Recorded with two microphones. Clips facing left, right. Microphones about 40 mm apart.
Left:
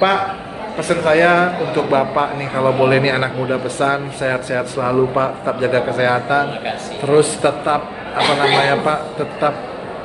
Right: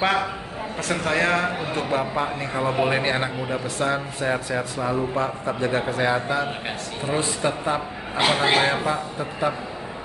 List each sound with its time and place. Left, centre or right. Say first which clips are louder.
0.0 s a man's voice: left 7 dB; centre
1.0 s a man's voice: left 9 dB; left
3.3 s a man's voice: left 8 dB; left
3.8 s a man's voice: left 5 dB; left
8.2 s a man's voice: left 5 dB; centre
8.8 s a man's voice: left 7 dB; left